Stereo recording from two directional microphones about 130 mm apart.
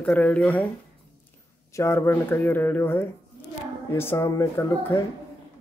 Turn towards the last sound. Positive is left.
turn(degrees=20)  # may be behind; listen again after turning